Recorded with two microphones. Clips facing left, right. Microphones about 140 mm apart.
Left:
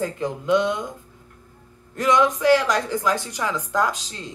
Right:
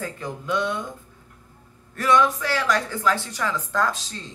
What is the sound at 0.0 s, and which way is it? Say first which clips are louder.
Speech: left 6 dB; 20° left (ahead or behind).